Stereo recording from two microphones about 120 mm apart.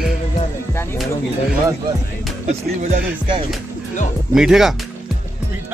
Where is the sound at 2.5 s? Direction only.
80° right.